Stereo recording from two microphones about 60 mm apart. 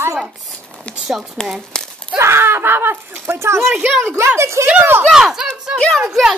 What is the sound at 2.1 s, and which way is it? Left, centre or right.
Speech, right.